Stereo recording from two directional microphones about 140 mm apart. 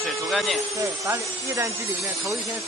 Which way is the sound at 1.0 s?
20° right (ahead or behind).